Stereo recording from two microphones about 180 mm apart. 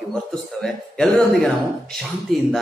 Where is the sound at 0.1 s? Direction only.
5° left (ahead or behind).